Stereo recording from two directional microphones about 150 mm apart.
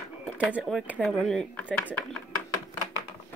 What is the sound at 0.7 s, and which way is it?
Speech, 5° right (ahead or behind).